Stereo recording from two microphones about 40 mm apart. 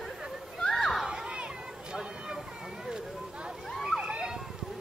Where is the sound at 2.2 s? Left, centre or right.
Centre.